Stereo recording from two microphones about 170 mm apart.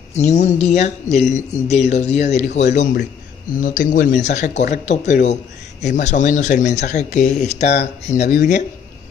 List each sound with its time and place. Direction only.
0.1 s speech: 45° left (ahead or behind)